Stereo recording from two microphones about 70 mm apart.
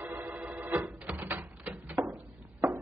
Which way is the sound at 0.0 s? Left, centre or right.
Right.